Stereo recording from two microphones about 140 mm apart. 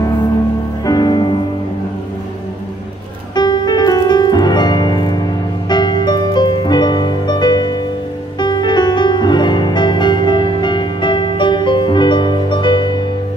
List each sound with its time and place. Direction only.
0.8 s music: 30° left (ahead or behind)
3.3 s music: 30° left (ahead or behind)